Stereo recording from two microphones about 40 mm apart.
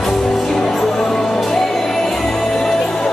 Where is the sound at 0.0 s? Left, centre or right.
Centre.